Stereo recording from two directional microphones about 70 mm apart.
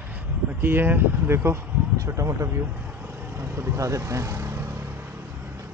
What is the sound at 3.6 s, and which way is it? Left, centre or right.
Speech, right.